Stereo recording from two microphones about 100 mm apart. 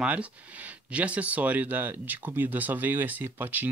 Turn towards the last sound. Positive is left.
turn(degrees=-20)  # may be behind; listen again after turning